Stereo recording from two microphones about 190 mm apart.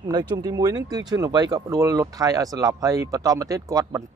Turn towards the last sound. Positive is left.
turn(degrees=-20)  # may be behind; listen again after turning